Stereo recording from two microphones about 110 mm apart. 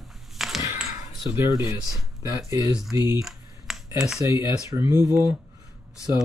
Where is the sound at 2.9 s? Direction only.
25° right (ahead or behind).